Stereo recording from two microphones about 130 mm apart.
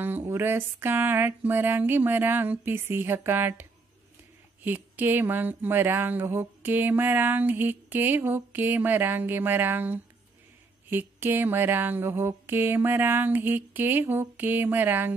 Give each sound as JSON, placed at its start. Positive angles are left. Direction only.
{"t": 0.0, "sound": "speech", "side_deg": -15}
{"t": 4.6, "sound": "speech", "side_deg": -15}